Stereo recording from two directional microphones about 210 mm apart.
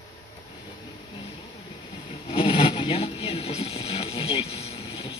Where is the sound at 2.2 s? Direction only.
25° left (ahead or behind).